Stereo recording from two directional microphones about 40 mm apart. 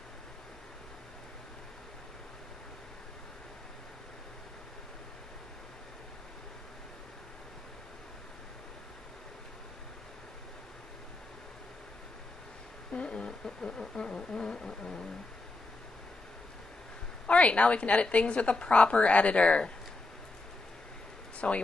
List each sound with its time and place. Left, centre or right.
12.9 s a sound: left
17.3 s a woman's voice: left
21.4 s speech: left